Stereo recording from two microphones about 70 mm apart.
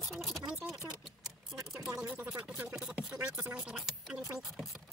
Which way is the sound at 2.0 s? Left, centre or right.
Right.